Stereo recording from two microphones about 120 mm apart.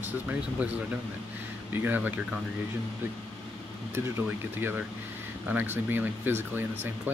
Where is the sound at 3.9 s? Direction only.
20° right (ahead or behind).